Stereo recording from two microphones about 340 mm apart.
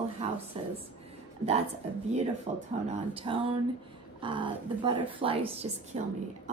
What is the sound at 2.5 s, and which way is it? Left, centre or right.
A woman's voice, centre.